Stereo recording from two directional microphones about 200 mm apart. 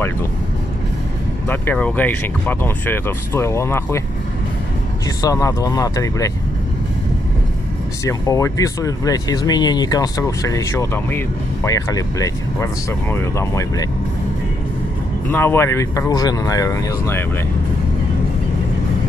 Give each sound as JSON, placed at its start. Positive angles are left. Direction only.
{"t": 1.5, "sound": "speech", "side_deg": 10}
{"t": 5.2, "sound": "speech", "side_deg": 15}
{"t": 8.0, "sound": "speech", "side_deg": 15}
{"t": 15.3, "sound": "speech", "side_deg": 10}